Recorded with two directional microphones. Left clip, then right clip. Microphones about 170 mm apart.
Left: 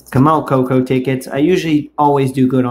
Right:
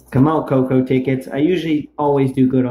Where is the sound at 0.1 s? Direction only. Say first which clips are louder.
Left 3 dB; 20° left (ahead or behind).